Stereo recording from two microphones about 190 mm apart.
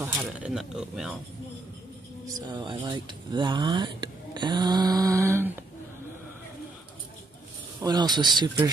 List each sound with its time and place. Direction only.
0.0 s speech: 10° right (ahead or behind)
2.2 s speech: 25° right (ahead or behind)
7.8 s speech: 20° right (ahead or behind)